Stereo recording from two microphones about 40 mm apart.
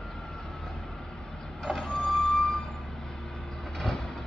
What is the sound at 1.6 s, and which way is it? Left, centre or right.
Reversing beeps, centre.